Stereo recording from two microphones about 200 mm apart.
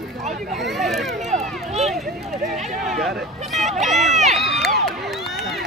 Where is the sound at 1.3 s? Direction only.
35° right (ahead or behind).